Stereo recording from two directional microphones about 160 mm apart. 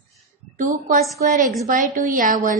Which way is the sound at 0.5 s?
55° right (ahead or behind).